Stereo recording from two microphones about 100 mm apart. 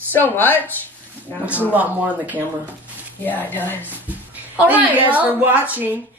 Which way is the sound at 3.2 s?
20° left (ahead or behind).